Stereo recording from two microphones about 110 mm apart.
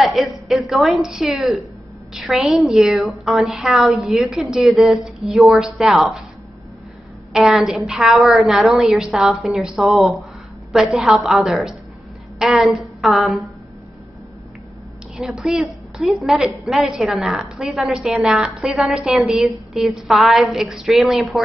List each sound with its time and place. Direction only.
0.0 s a woman's voice: centre (ahead or behind)
7.3 s a woman's voice: 5° right (ahead or behind)
15.1 s a woman's voice: 5° right (ahead or behind)